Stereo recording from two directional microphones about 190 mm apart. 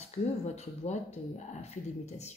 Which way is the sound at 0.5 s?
35° left (ahead or behind).